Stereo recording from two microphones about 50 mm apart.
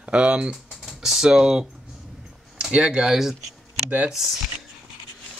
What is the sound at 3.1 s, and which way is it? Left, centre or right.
Speech, centre.